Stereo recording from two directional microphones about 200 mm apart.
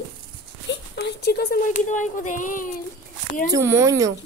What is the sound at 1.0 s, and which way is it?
Speech, 55° left (ahead or behind).